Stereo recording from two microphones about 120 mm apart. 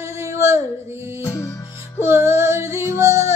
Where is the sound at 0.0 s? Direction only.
25° right (ahead or behind).